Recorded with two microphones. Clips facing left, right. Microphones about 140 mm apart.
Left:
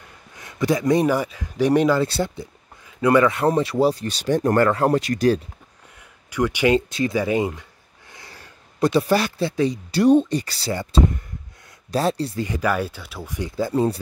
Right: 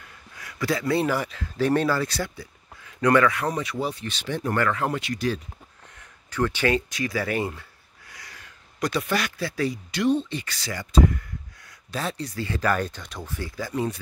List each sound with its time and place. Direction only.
0.4 s speech: 20° left (ahead or behind)
2.0 s speech: 25° left (ahead or behind)
3.0 s speech: 15° left (ahead or behind)
3.3 s speech: 25° left (ahead or behind)
6.3 s speech: 15° left (ahead or behind)
6.9 s speech: 25° left (ahead or behind)
8.1 s a sound: 25° left (ahead or behind)
9.8 s speech: 35° left (ahead or behind)
11.9 s speech: 35° left (ahead or behind)
12.4 s speech: 15° left (ahead or behind)
13.6 s speech: 30° left (ahead or behind)